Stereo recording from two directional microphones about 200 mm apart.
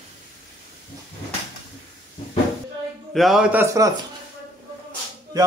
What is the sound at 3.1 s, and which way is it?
Speech, centre (ahead or behind).